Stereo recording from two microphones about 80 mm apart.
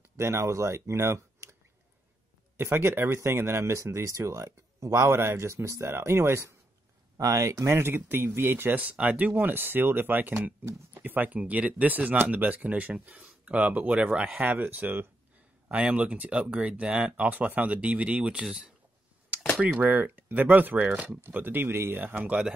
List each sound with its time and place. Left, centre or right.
0.2 s speech: right
7.2 s speech: right